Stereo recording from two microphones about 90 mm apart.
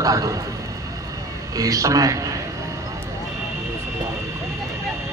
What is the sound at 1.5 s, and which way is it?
Speech, 40° right (ahead or behind).